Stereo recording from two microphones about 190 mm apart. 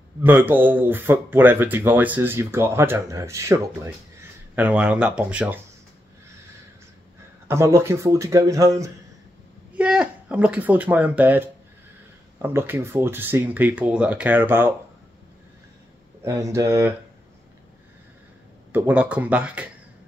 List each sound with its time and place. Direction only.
0.2 s speech: 10° right (ahead or behind)
7.4 s speech: 15° right (ahead or behind)
9.8 s speech: 5° right (ahead or behind)
16.3 s speech: 15° right (ahead or behind)
18.7 s speech: 10° right (ahead or behind)